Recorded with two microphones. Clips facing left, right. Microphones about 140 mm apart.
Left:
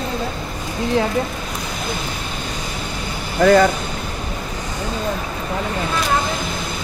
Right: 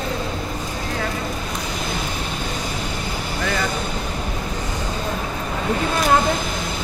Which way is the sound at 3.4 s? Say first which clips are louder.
Left 13 dB; 50° left (ahead or behind).